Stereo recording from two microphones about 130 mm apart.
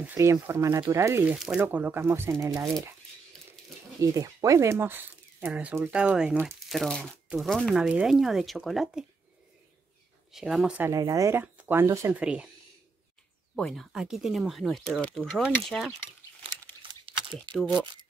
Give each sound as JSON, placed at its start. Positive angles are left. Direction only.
{"t": 0.0, "sound": "speech", "side_deg": -20}
{"t": 4.0, "sound": "speech", "side_deg": -25}
{"t": 6.7, "sound": "speech", "side_deg": 5}
{"t": 10.3, "sound": "speech", "side_deg": -5}
{"t": 10.8, "sound": "speech", "side_deg": -25}
{"t": 11.4, "sound": "speech", "side_deg": -15}
{"t": 12.1, "sound": "speech", "side_deg": -10}
{"t": 13.6, "sound": "speech", "side_deg": 5}
{"t": 17.0, "sound": "a sound", "side_deg": -40}